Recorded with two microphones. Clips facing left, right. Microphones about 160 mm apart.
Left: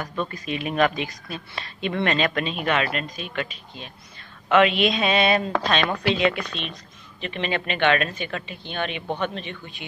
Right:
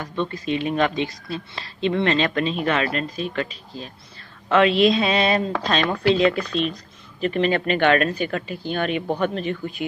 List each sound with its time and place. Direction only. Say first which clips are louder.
0.0 s speech: right 3 dB; 25° right (ahead or behind); by 9.8 s 40° right (ahead or behind)